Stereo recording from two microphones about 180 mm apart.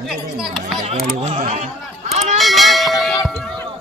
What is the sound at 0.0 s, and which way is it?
Speech, centre (ahead or behind).